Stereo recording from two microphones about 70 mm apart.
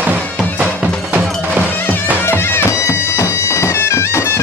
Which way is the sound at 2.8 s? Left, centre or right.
Left.